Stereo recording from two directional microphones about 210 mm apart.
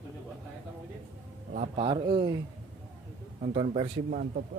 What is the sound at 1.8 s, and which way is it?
Speech, 25° right (ahead or behind).